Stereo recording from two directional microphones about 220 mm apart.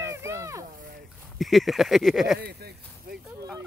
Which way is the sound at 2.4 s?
45° right (ahead or behind).